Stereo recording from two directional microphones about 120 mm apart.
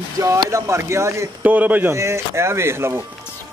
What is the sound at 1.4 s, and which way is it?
Speech, 15° right (ahead or behind).